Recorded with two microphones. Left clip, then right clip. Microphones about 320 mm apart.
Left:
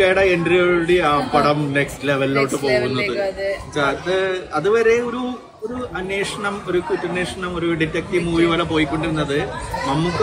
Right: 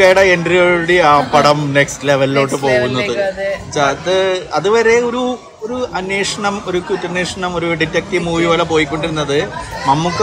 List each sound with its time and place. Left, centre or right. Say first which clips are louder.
0.0 s speech: right 6 dB; centre